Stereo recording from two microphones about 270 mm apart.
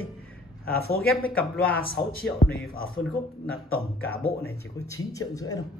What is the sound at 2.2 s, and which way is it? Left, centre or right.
Speech, left.